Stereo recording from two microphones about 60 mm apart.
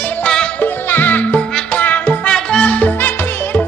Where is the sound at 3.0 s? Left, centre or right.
Left.